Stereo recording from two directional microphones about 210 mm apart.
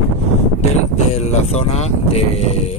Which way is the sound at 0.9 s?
30° left (ahead or behind).